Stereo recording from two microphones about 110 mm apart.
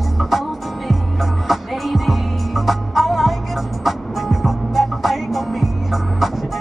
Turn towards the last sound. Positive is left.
turn(degrees=0)  # may be behind; listen again after turning